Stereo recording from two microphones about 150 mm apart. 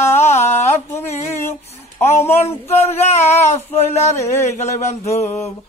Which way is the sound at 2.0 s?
45° left (ahead or behind).